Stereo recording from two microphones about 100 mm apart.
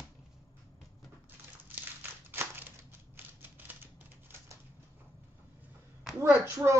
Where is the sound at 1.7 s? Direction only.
20° right (ahead or behind).